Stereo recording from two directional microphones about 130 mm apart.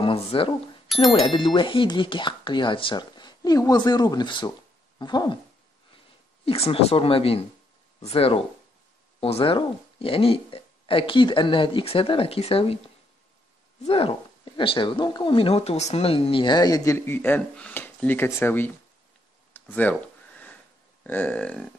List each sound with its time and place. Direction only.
0.0 s speech: 45° left (ahead or behind)
6.4 s speech: 50° left (ahead or behind); by 18.7 s 15° left (ahead or behind)
19.5 s a sound: 15° left (ahead or behind)